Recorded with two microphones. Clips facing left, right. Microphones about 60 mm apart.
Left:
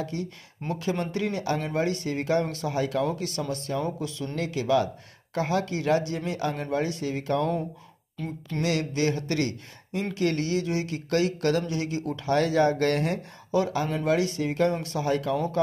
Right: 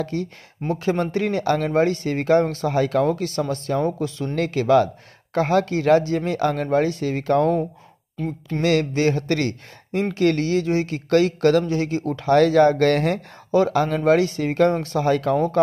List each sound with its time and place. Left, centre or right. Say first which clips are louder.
0.0 s speech: right 6 dB; right
0.7 s speech: right 6 dB; right
4.4 s speech: right 7 dB; right
8.2 s speech: right 5 dB; right
8.6 s speech: right 7 dB; right
11.6 s speech: right 7 dB; right
12.3 s speech: right 8 dB; right
15.0 s speech: right 6 dB; right